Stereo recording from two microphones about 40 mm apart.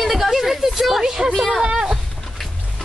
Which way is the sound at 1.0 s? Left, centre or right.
Centre.